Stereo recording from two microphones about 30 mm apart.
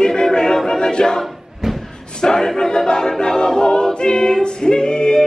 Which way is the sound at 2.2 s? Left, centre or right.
Left.